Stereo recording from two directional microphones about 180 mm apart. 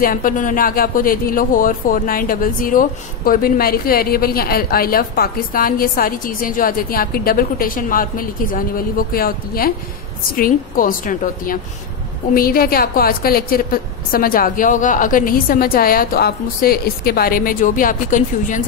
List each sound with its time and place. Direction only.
0.0 s speech: 50° left (ahead or behind)